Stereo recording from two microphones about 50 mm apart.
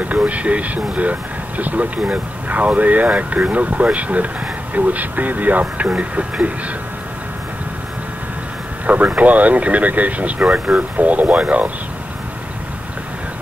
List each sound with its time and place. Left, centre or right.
0.0 s speech: right
8.8 s speech: right